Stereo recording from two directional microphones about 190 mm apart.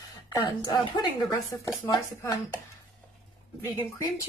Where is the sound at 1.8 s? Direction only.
20° left (ahead or behind).